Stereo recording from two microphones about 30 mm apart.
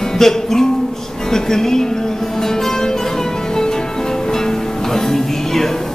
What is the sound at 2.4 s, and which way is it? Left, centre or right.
Music, centre.